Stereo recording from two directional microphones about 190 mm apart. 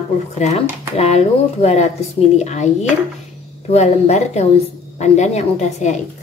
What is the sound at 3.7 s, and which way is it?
A woman's voice, 35° left (ahead or behind).